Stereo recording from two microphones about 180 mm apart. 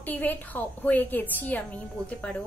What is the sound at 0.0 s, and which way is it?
A woman's voice, 10° left (ahead or behind).